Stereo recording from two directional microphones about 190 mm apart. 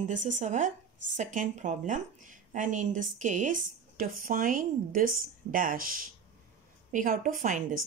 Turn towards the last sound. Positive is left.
turn(degrees=-45)  # may be behind; listen again after turning